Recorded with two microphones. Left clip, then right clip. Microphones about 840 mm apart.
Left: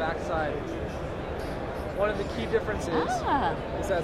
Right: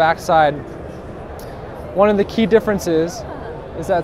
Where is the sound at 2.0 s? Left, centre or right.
Right.